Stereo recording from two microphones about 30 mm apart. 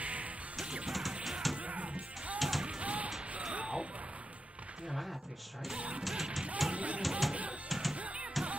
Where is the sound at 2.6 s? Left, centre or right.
Right.